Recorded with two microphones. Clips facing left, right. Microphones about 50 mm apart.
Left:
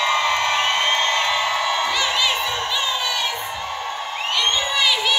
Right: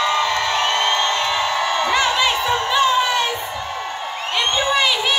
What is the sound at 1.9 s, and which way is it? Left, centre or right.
Crowd, right.